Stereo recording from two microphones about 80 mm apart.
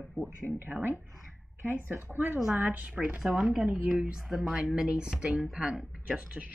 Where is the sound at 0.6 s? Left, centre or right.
Right.